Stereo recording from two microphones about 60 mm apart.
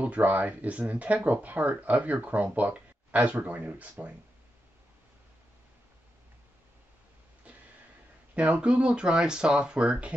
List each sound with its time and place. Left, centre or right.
0.0 s speech: right
7.5 s a sound: right
8.4 s speech: centre